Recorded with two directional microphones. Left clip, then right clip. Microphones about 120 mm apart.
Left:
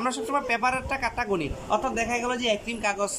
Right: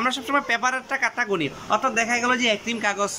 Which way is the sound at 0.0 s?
10° left (ahead or behind).